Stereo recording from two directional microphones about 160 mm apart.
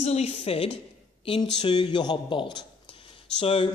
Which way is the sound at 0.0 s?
40° left (ahead or behind).